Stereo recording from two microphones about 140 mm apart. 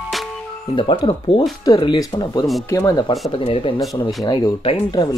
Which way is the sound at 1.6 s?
30° left (ahead or behind).